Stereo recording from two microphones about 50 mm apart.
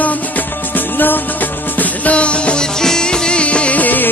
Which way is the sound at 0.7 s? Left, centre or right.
Left.